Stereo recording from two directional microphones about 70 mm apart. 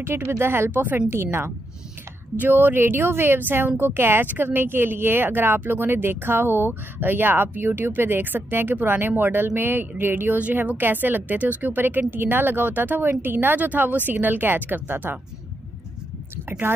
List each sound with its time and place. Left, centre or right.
0.0 s a woman's voice: right
16.4 s speech: right